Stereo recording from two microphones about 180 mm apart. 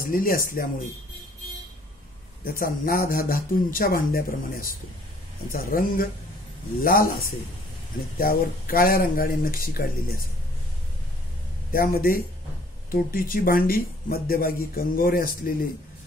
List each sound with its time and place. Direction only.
0.0 s speech: 50° left (ahead or behind)
2.6 s speech: 50° left (ahead or behind)
8.2 s speech: 50° left (ahead or behind)
11.7 s speech: 55° left (ahead or behind)